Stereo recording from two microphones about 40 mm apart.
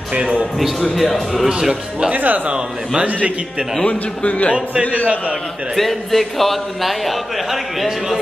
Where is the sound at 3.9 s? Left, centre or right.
Left.